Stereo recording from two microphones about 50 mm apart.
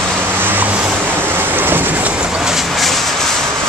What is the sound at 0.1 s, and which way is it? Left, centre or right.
Vehicle, right.